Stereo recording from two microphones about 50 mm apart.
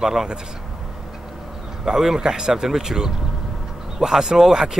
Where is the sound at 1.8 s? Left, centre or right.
Centre.